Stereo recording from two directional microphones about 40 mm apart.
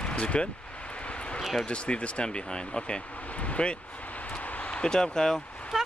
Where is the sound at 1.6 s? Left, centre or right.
Left.